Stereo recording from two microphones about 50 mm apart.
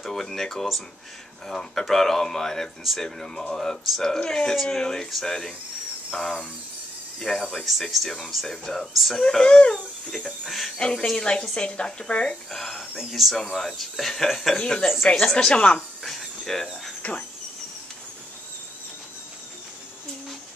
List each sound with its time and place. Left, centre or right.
0.0 s speech: centre
9.2 s speech: centre
10.1 s speech: centre
10.8 s speech: centre
12.4 s speech: centre
14.6 s speech: centre
16.0 s a sound: centre
17.0 s speech: left